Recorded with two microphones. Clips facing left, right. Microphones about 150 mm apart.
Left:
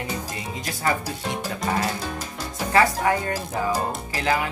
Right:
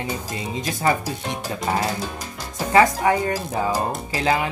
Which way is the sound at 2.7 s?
20° right (ahead or behind).